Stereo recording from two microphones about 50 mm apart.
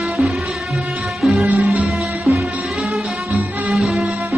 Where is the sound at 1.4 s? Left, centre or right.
Right.